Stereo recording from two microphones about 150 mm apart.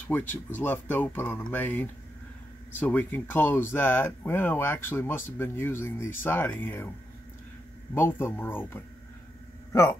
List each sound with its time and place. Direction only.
0.1 s speech: 10° left (ahead or behind)
7.9 s speech: 15° left (ahead or behind)